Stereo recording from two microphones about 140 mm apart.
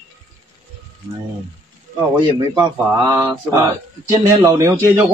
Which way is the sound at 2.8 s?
25° right (ahead or behind).